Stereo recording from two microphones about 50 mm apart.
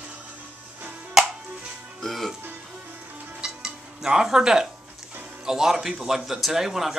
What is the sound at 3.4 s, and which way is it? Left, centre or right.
Cutlery, centre.